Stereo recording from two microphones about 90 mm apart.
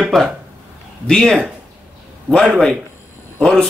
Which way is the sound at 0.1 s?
5° left (ahead or behind).